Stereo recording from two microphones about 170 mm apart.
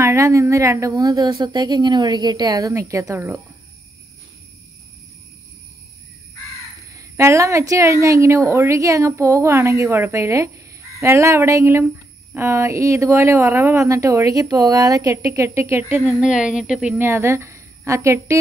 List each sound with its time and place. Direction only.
0.0 s a woman's voice: 15° right (ahead or behind)
6.9 s a woman's voice: 15° right (ahead or behind)
16.1 s speech: 5° right (ahead or behind)
17.0 s a woman's voice: 15° right (ahead or behind)